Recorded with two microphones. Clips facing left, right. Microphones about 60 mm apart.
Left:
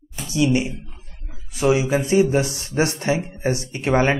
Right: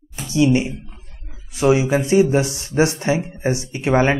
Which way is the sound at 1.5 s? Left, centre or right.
Right.